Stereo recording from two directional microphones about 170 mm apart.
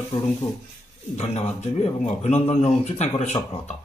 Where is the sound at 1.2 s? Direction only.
40° left (ahead or behind).